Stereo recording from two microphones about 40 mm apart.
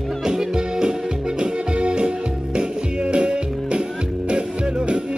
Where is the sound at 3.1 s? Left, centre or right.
Right.